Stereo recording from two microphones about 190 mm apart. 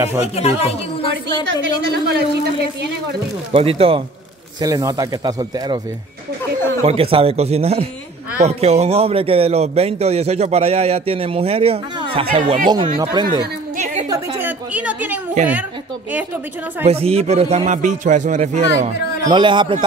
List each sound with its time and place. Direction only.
0.2 s speech: 35° left (ahead or behind)
1.8 s speech: 60° right (ahead or behind)
3.5 s speech: 30° right (ahead or behind)
4.6 s speech: 20° right (ahead or behind)
6.8 s a man's voice: 30° right (ahead or behind)
14.0 s a sound: 20° right (ahead or behind)
14.7 s a woman's voice: 5° right (ahead or behind)
16.8 s a man's voice: 30° right (ahead or behind)
19.2 s speech: 25° right (ahead or behind)